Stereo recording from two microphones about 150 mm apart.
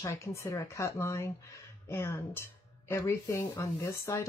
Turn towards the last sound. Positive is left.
turn(degrees=20)  # may be behind; listen again after turning